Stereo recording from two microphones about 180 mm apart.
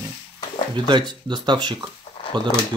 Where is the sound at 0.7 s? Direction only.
25° right (ahead or behind).